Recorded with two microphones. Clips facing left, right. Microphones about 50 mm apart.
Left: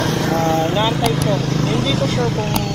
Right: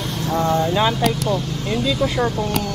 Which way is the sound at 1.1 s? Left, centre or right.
Left.